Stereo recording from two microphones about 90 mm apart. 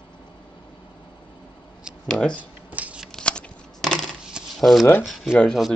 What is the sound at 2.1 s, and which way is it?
Speech, 10° left (ahead or behind).